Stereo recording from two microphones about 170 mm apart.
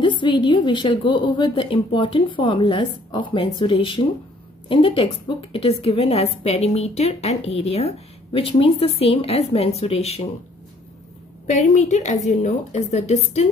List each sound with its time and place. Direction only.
0.2 s a woman's voice: 25° left (ahead or behind)
11.4 s a woman's voice: 45° left (ahead or behind)